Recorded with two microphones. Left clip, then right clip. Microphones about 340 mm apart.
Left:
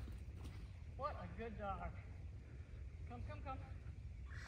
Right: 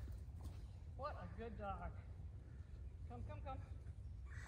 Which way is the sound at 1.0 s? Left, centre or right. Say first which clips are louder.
Left 3 dB; centre.